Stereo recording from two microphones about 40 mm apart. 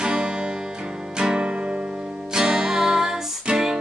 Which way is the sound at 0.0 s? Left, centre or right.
Centre.